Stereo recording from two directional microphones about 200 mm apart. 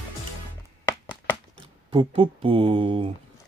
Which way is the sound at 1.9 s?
25° right (ahead or behind).